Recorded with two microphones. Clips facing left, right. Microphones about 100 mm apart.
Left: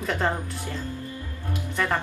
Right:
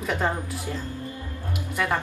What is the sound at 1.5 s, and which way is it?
Music, 10° right (ahead or behind).